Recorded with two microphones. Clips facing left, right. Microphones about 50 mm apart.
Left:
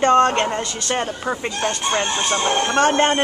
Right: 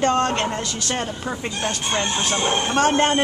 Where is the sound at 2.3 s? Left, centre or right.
Left.